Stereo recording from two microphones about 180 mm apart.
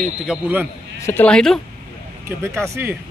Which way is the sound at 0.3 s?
10° right (ahead or behind).